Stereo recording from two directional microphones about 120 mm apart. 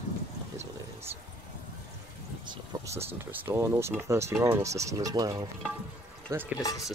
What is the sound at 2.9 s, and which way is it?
Speech, 55° right (ahead or behind).